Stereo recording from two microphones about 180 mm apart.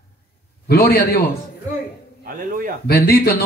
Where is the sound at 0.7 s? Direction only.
60° left (ahead or behind).